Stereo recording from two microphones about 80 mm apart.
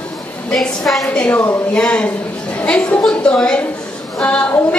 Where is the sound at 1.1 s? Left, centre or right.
Centre.